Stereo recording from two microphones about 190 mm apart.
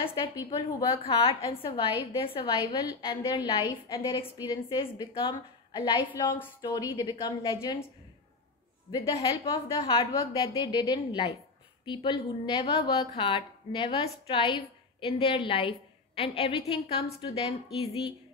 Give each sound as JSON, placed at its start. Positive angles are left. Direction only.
{"t": 0.0, "sound": "a woman's voice", "side_deg": 25}
{"t": 8.9, "sound": "a woman's voice", "side_deg": 25}